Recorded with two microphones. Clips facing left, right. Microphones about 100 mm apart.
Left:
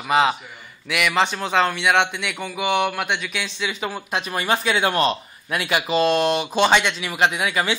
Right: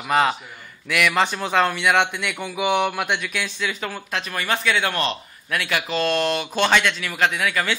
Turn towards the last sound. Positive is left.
turn(degrees=20)  # may be behind; listen again after turning